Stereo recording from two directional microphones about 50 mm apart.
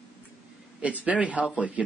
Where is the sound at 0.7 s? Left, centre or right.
Right.